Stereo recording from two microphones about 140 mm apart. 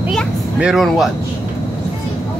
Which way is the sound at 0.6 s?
5° right (ahead or behind).